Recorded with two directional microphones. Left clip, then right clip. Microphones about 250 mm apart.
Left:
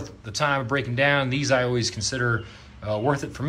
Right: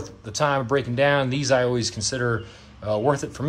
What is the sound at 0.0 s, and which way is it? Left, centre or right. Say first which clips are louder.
Speech: right 2 dB; centre.